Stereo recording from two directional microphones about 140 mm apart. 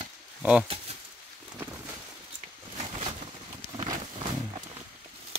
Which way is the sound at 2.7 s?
45° right (ahead or behind).